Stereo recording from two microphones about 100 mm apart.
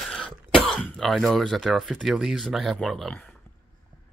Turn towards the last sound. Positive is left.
turn(degrees=0)  # may be behind; listen again after turning